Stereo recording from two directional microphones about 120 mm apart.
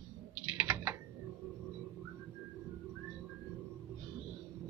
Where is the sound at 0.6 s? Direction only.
20° right (ahead or behind).